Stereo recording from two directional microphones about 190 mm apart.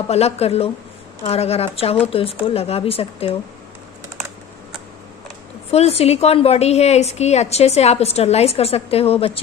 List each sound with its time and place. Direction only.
0.1 s a woman's voice: 35° left (ahead or behind)
5.7 s a woman's voice: 35° left (ahead or behind)